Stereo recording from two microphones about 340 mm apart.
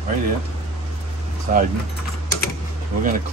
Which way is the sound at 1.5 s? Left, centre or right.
Right.